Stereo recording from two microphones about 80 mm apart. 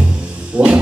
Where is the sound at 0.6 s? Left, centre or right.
Centre.